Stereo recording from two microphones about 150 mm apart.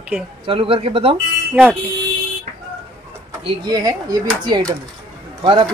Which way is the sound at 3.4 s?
30° right (ahead or behind).